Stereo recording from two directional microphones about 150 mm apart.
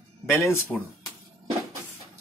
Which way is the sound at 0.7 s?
5° right (ahead or behind).